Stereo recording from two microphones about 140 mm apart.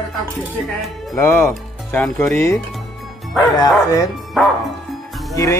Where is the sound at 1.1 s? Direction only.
15° left (ahead or behind).